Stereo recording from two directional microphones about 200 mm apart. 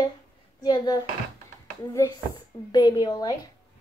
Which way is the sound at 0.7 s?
20° left (ahead or behind).